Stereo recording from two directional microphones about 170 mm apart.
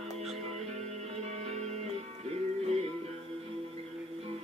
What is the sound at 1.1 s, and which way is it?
Music, 40° right (ahead or behind).